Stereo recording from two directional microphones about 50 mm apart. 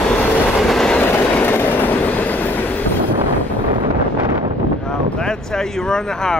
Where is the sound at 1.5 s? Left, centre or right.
Left.